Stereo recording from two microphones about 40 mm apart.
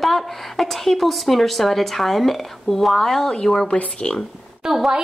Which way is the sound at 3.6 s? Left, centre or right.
Left.